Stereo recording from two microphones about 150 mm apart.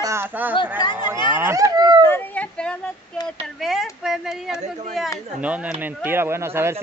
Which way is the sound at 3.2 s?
Centre (ahead or behind).